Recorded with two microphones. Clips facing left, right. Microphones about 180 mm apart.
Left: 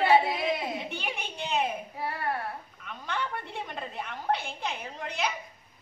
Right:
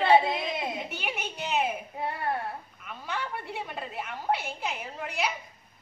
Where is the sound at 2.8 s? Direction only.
5° right (ahead or behind).